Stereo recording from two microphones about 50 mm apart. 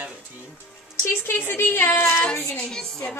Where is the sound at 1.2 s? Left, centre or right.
Left.